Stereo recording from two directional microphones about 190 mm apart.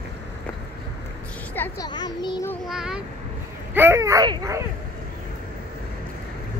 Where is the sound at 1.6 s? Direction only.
20° left (ahead or behind).